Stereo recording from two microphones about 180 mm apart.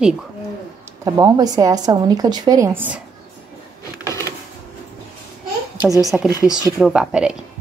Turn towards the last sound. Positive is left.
turn(degrees=-5)  # may be behind; listen again after turning